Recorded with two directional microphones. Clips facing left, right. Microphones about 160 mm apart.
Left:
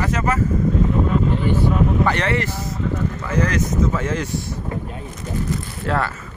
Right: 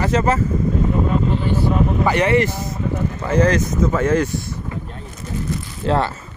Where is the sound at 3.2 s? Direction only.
30° right (ahead or behind).